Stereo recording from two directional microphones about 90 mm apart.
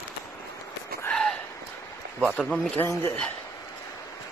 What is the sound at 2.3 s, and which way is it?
Speech, 5° left (ahead or behind).